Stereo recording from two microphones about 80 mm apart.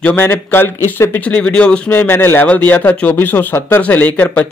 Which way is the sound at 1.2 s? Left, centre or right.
Centre.